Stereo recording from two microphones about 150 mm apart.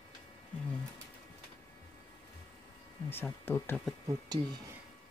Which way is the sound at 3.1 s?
15° left (ahead or behind).